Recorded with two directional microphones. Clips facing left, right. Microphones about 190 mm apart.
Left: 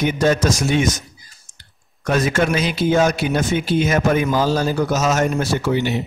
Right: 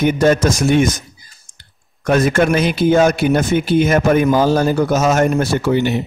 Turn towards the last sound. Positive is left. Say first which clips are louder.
# right 4 dB
turn(degrees=-55)  # may be behind; listen again after turning